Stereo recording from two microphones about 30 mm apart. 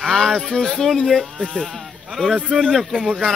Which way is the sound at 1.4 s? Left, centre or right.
Centre.